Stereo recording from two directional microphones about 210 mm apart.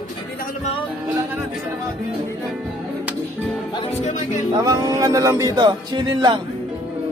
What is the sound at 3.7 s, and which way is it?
Music, 25° left (ahead or behind).